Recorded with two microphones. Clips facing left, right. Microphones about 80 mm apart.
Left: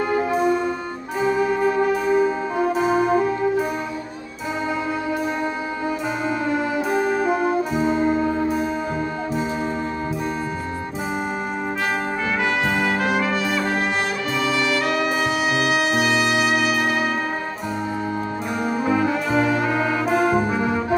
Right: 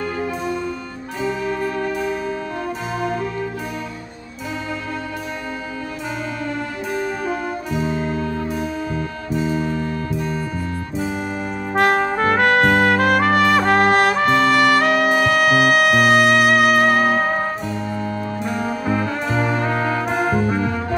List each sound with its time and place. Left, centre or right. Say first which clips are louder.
1.2 s music: left 4 dB; centre
6.5 s music: left 4 dB; centre
9.3 s music: right 7 dB; centre
11.7 s trumpet: right 10 dB; right
18.5 s music: left 1 dB; centre
19.6 s brass instrument: even; centre